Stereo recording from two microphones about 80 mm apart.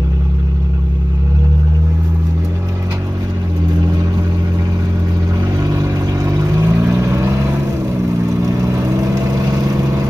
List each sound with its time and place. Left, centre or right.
5.7 s vehicle: right